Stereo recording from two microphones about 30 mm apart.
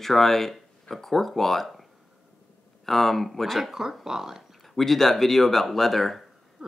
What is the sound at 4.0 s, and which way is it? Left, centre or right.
Speech, centre.